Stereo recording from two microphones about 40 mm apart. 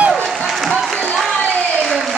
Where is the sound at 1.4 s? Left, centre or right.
Left.